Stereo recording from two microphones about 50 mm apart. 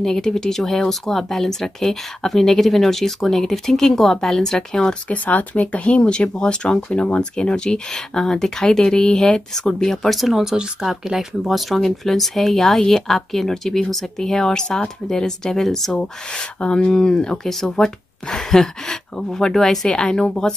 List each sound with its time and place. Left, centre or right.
0.0 s speech: centre
5.1 s speech: left; by 10.1 s centre
10.1 s speech: centre
16.0 s speech: centre
20.0 s speech: centre